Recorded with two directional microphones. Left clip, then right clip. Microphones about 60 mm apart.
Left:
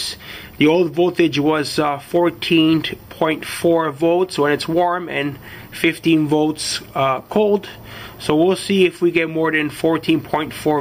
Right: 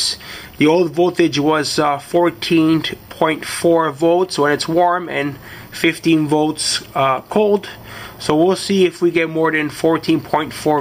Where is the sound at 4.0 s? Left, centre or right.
Right.